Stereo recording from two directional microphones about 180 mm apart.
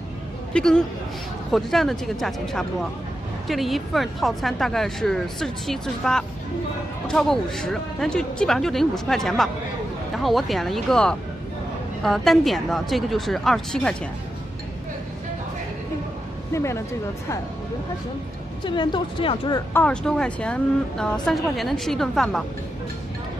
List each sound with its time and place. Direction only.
0.5 s a woman's voice: 5° left (ahead or behind)
16.5 s speech: 15° left (ahead or behind)
18.6 s a woman's voice: 25° left (ahead or behind)
19.7 s speech: 5° left (ahead or behind)